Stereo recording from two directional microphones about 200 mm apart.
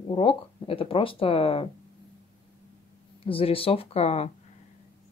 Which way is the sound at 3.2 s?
30° left (ahead or behind).